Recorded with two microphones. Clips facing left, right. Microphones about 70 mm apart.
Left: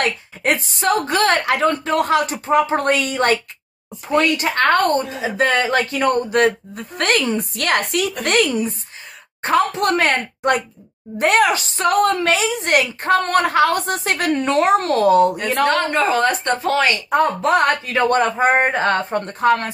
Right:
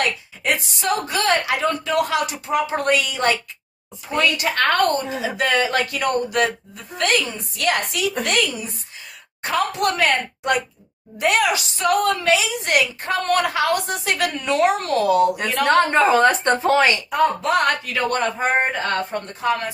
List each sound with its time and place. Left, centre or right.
0.0 s a woman's voice: left
15.6 s speech: right
17.1 s a woman's voice: left